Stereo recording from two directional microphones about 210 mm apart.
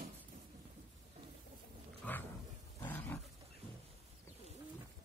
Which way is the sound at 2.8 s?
10° left (ahead or behind).